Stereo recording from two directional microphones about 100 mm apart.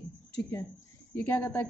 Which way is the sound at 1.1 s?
20° left (ahead or behind).